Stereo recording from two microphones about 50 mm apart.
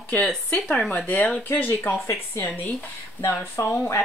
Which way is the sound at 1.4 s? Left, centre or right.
Left.